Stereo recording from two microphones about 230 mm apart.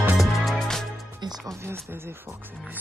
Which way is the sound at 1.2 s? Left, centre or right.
Centre.